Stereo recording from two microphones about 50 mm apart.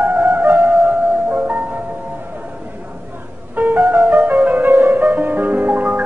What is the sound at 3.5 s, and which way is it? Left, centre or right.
Music, right.